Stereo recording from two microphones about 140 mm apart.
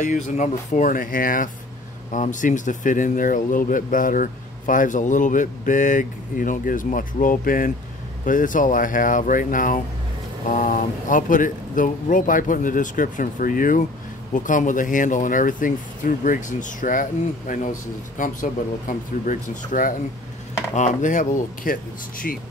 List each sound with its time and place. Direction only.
0.0 s speech: 60° left (ahead or behind)
2.1 s speech: 65° left (ahead or behind)
20.7 s speech: 60° left (ahead or behind)